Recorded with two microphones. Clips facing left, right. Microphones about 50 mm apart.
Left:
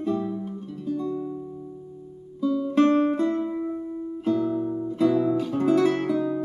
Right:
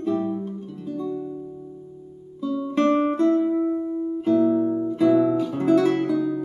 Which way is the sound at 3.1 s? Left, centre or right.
Centre.